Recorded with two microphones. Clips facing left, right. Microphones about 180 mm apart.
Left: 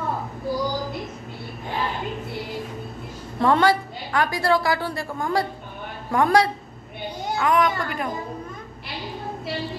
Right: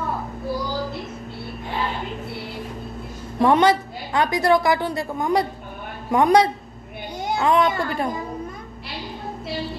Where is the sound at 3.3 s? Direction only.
20° right (ahead or behind).